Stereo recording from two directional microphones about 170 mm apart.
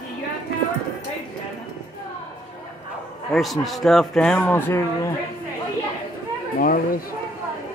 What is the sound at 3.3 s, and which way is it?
A man's voice, centre (ahead or behind).